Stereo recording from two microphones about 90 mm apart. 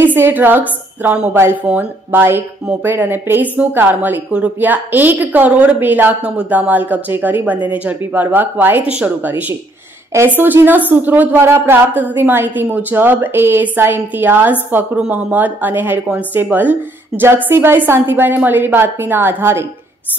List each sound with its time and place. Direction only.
0.0 s a woman's voice: 20° right (ahead or behind)